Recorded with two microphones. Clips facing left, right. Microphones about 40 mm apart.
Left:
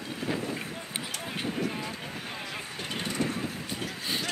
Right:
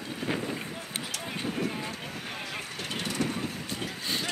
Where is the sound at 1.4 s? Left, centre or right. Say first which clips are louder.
Even; centre.